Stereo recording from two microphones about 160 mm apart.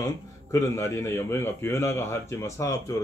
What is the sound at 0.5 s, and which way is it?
A man's voice, 20° left (ahead or behind).